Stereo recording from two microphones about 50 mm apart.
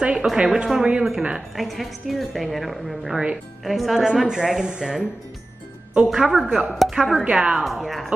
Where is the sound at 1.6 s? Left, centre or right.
Centre.